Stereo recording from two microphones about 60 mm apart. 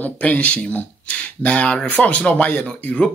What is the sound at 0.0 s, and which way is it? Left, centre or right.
Speech, left.